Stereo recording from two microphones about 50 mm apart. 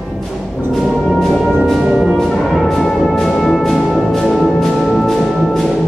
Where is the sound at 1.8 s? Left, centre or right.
Centre.